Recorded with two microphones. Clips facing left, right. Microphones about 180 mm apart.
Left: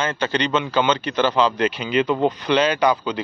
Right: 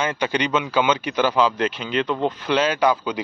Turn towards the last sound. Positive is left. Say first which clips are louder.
# left 1 dB
turn(degrees=-5)  # may be behind; listen again after turning